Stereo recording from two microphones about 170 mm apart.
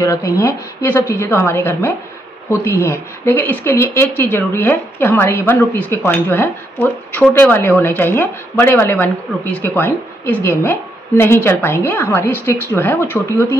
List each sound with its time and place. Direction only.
0.0 s speech: 20° left (ahead or behind)